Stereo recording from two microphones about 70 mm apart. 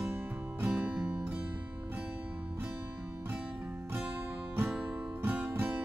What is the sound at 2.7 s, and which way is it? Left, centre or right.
Music, right.